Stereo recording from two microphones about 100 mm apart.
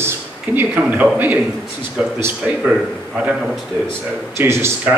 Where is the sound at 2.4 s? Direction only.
10° right (ahead or behind).